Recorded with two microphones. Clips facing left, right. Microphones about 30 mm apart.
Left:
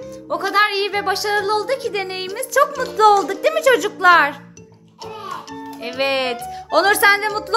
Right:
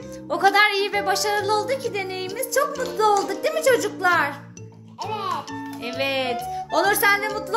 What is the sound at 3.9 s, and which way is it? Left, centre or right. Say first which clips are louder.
Speech: left 7 dB; left.